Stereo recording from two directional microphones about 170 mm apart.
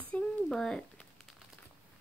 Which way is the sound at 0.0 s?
5° left (ahead or behind).